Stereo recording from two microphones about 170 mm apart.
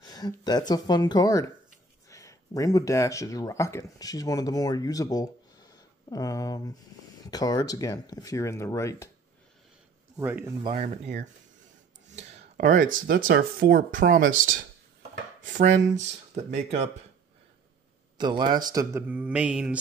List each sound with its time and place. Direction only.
0.0 s speech: 25° left (ahead or behind)
10.1 s mantra: 10° right (ahead or behind)
10.7 s speech: 40° right (ahead or behind)
12.2 s speech: 40° right (ahead or behind)
18.1 s a man's voice: 25° right (ahead or behind)
19.0 s mantra: 10° right (ahead or behind)